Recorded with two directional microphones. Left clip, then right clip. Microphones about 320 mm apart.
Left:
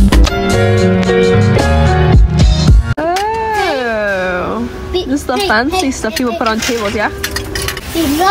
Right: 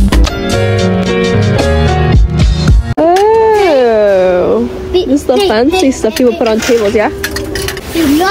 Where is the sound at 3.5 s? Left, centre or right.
Centre.